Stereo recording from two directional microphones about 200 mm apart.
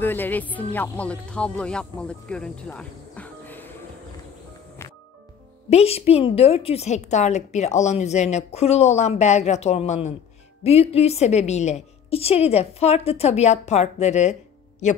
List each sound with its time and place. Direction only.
0.0 s speech: 10° left (ahead or behind)
5.7 s a woman's voice: 30° left (ahead or behind)